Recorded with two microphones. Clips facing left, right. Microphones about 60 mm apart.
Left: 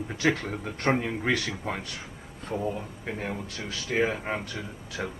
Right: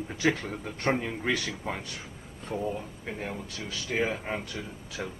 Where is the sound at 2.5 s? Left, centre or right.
Centre.